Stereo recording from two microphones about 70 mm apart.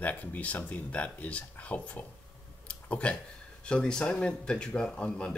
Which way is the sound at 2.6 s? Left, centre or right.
Centre.